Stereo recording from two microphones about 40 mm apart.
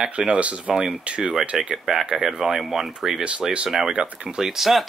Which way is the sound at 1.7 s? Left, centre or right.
Centre.